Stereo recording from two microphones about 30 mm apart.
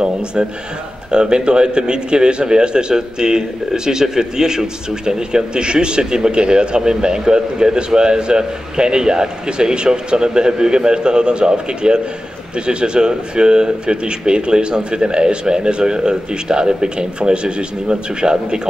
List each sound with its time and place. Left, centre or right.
1.1 s a man's voice: right